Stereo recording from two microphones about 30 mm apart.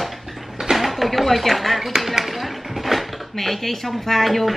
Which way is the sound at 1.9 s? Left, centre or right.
Centre.